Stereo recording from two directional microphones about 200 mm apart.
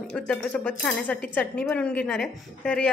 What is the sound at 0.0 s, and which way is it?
Speech, 5° left (ahead or behind).